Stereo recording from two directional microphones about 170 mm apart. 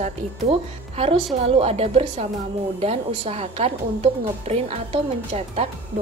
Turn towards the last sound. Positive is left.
turn(degrees=-40)  # may be behind; listen again after turning